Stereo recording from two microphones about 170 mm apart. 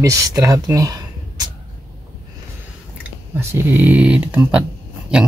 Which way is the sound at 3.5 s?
10° right (ahead or behind).